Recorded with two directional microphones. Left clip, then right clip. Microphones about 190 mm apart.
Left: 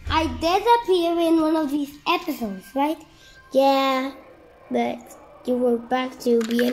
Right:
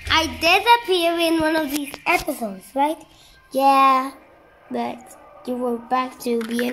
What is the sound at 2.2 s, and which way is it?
Speech, 25° right (ahead or behind).